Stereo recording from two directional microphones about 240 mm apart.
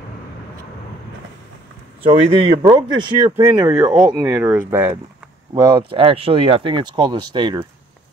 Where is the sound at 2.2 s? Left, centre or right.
Right.